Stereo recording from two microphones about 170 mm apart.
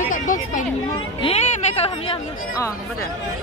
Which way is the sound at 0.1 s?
50° left (ahead or behind).